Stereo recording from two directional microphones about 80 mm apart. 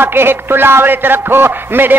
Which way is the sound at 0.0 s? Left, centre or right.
Right.